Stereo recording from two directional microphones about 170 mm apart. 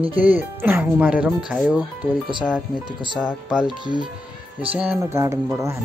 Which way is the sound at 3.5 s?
5° right (ahead or behind).